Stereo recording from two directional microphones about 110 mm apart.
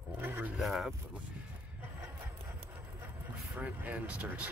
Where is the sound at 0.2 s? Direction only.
15° right (ahead or behind).